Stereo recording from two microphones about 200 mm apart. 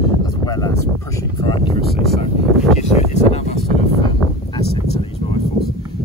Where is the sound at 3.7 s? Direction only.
25° left (ahead or behind).